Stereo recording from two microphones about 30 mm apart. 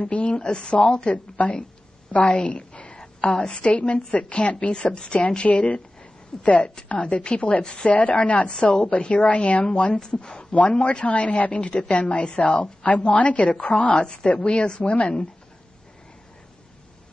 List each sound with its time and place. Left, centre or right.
0.0 s a sound: left
0.7 s speech: left
1.0 s a woman's voice: left
2.2 s a sound: left
3.3 s a woman's voice: left
6.4 s a woman's voice: left
7.6 s a woman's voice: left
7.9 s a woman's voice: left
14.2 s a woman's voice: left
14.8 s a woman's voice: left